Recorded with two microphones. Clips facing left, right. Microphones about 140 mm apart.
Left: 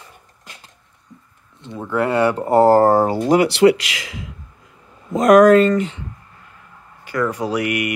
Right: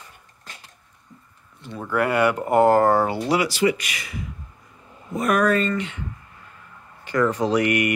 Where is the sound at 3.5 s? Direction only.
70° left (ahead or behind).